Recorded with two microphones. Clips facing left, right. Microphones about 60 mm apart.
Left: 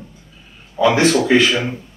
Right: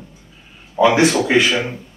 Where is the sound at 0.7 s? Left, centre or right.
Centre.